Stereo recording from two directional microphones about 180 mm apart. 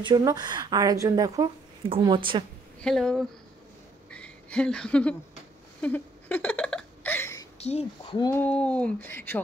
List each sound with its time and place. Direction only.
0.0 s speech: 20° right (ahead or behind)
2.8 s speech: 5° left (ahead or behind)
5.8 s a sound: 10° left (ahead or behind)
7.5 s speech: 35° left (ahead or behind)
8.2 s speech: 15° left (ahead or behind)
8.5 s speech: 5° left (ahead or behind)